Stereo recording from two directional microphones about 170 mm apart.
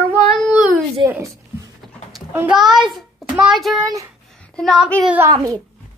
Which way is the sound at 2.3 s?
10° right (ahead or behind).